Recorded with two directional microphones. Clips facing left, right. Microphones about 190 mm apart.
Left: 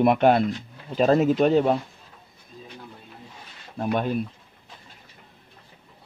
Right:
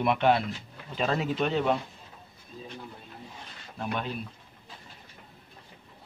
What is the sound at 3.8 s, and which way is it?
Speech, 50° left (ahead or behind).